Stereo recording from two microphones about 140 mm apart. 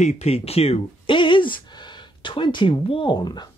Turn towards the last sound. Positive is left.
turn(degrees=30)  # may be behind; listen again after turning